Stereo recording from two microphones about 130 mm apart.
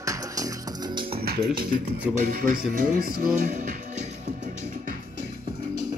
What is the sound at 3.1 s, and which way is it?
Music, 90° right.